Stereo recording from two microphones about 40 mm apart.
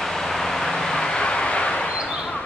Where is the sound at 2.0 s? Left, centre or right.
Right.